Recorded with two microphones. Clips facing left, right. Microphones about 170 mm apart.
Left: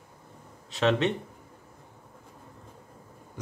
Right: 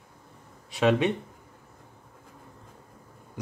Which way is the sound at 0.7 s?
10° right (ahead or behind).